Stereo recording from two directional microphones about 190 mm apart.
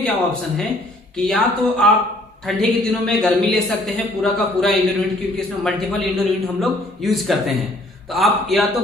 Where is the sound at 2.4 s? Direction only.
Centre (ahead or behind).